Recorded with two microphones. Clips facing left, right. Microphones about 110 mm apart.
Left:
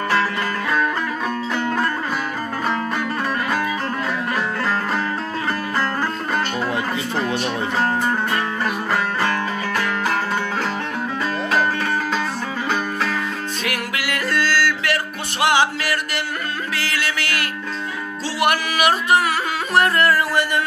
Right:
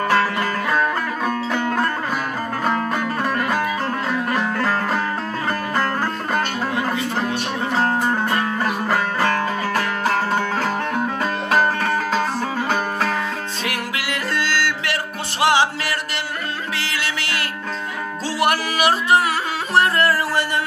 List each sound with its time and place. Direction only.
0.1 s music: 40° right (ahead or behind)
4.3 s music: 45° right (ahead or behind)
8.9 s music: 45° right (ahead or behind)
13.7 s music: 25° right (ahead or behind)